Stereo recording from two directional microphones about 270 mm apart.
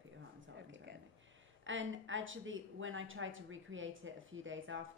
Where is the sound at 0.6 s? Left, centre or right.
Right.